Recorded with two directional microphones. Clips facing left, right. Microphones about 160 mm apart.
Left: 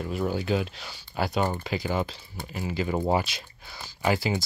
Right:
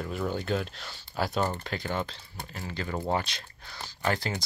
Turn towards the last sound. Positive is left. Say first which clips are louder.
# left 4 dB
turn(degrees=5)  # may be behind; listen again after turning